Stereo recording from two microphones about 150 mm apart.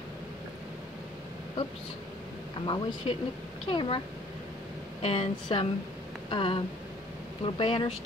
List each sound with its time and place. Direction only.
2.6 s speech: 35° left (ahead or behind)
5.0 s speech: 40° left (ahead or behind)